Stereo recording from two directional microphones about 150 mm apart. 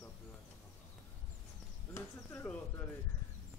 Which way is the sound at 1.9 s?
15° left (ahead or behind).